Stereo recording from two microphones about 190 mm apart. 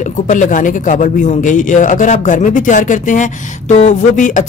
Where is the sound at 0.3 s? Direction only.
40° left (ahead or behind).